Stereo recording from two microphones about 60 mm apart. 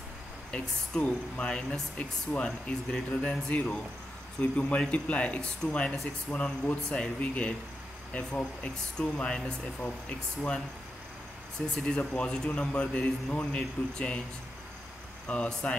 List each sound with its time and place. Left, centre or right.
0.5 s speech: centre
11.7 s speech: centre
15.2 s speech: centre